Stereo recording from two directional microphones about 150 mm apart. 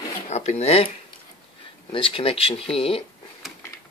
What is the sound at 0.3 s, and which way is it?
Speech, 45° left (ahead or behind).